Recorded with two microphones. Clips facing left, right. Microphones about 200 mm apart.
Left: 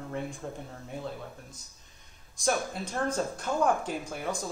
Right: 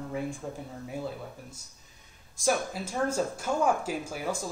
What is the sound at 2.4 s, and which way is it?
Speech, 5° right (ahead or behind).